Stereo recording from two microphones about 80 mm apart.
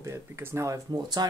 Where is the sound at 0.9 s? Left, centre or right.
Right.